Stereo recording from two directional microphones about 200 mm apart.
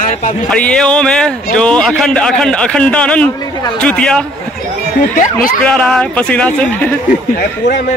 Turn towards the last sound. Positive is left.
turn(degrees=55)  # may be behind; listen again after turning